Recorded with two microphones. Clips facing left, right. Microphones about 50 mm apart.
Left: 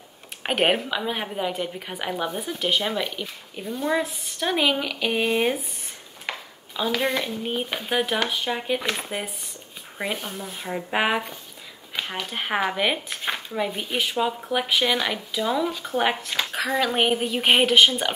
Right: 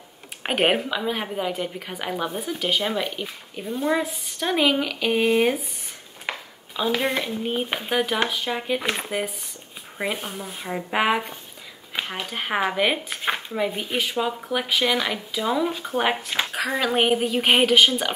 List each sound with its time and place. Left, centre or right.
0.4 s speech: centre
6.3 s a sound: centre
7.1 s speech: centre
7.9 s speech: centre
9.9 s speech: centre
11.9 s a sound: right
12.3 s speech: centre